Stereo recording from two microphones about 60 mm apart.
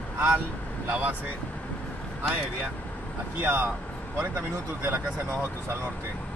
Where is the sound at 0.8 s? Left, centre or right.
Right.